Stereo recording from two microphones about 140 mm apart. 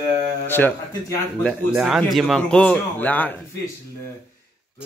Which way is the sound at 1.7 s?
5° right (ahead or behind).